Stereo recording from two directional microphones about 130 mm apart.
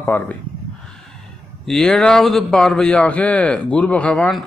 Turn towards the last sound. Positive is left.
turn(degrees=5)  # may be behind; listen again after turning